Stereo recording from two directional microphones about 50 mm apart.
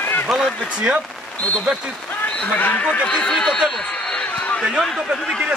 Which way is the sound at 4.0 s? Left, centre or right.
Centre.